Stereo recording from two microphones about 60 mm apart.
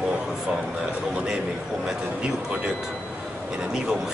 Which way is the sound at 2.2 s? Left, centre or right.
Centre.